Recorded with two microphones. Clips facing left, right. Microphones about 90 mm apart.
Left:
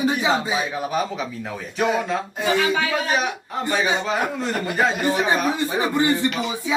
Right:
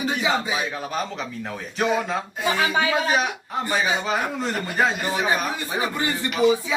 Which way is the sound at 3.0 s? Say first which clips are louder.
Even; centre (ahead or behind).